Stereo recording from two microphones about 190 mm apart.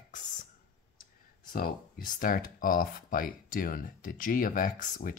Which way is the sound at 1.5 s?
50° left (ahead or behind).